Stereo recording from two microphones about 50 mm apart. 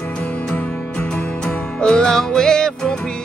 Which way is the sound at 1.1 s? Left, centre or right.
Centre.